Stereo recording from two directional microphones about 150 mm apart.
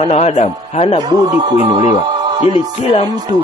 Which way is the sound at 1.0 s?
30° right (ahead or behind).